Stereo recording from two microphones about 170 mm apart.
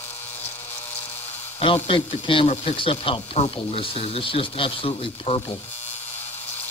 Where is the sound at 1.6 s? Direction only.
30° left (ahead or behind).